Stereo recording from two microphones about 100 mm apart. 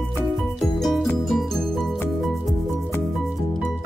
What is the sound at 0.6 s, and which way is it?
Music, centre (ahead or behind).